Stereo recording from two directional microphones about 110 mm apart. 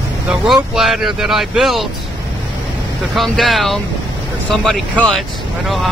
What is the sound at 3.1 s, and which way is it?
Speech, centre (ahead or behind).